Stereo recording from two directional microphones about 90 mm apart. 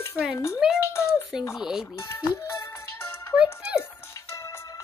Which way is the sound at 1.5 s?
5° right (ahead or behind).